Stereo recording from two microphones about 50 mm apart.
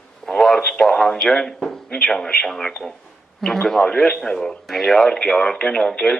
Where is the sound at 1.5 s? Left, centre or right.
Centre.